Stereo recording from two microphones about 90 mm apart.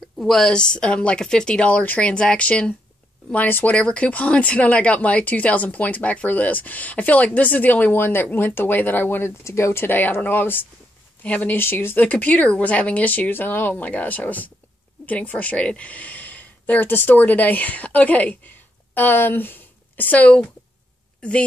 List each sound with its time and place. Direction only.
0.2 s a woman's voice: 5° left (ahead or behind)